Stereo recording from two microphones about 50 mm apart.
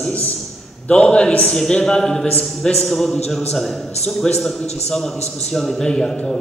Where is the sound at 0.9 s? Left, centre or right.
Centre.